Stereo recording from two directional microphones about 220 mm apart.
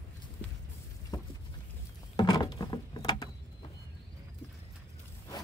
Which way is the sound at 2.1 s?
20° left (ahead or behind).